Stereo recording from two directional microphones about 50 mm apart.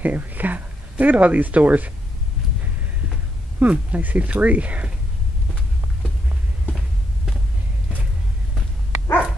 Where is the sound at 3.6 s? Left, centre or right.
Right.